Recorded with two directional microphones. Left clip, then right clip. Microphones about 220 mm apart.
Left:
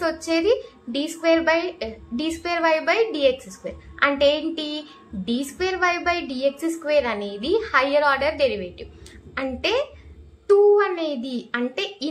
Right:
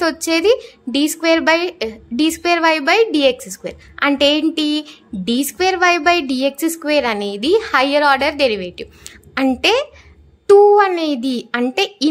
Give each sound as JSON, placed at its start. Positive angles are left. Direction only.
{"t": 0.0, "sound": "a woman's voice", "side_deg": -45}